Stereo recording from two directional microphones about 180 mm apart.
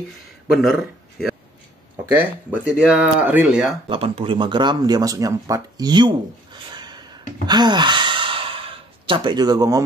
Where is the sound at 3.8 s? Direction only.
30° right (ahead or behind).